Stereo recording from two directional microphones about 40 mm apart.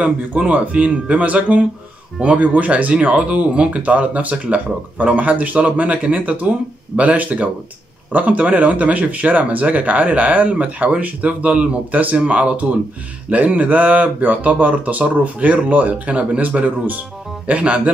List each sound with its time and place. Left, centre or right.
0.4 s speech: right